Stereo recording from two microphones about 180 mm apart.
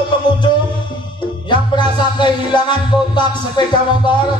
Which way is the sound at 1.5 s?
25° left (ahead or behind).